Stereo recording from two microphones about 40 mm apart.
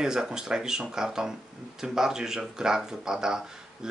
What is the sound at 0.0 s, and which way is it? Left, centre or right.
Speech, centre.